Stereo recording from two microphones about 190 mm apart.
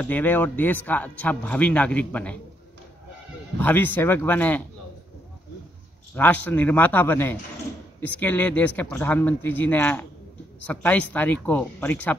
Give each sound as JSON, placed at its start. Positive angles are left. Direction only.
{"t": 0.0, "sound": "a man's voice", "side_deg": 10}
{"t": 3.5, "sound": "a man's voice", "side_deg": 10}
{"t": 6.1, "sound": "a man's voice", "side_deg": 10}